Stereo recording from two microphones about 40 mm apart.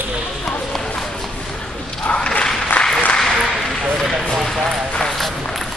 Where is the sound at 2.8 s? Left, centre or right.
Left.